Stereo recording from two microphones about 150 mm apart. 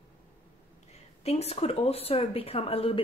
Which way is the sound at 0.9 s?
45° left (ahead or behind).